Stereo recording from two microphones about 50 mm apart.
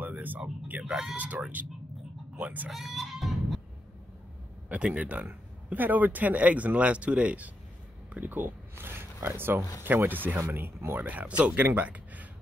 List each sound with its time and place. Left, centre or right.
0.0 s a sound: right
0.7 s speech: right
2.7 s music: centre
4.6 s speech: right
10.8 s speech: right
11.1 s speech: right